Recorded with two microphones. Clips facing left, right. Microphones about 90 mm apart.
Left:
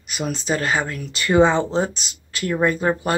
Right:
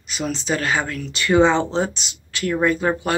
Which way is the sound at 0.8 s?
40° left (ahead or behind).